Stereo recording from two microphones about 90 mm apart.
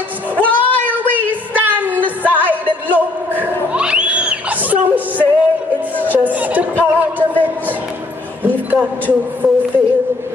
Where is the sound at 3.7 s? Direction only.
10° right (ahead or behind).